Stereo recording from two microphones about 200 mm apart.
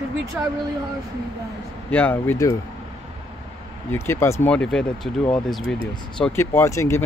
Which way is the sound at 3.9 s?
15° left (ahead or behind).